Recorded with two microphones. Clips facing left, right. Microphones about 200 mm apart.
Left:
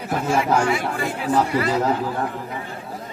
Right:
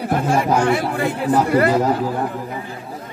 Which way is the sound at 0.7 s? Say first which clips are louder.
Right 4 dB; 55° right (ahead or behind).